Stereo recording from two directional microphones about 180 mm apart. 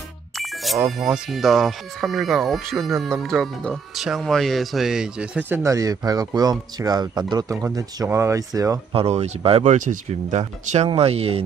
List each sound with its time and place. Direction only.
0.4 s music: centre (ahead or behind)
0.9 s speech: centre (ahead or behind); by 8.7 s 20° right (ahead or behind)
8.9 s speech: 35° right (ahead or behind)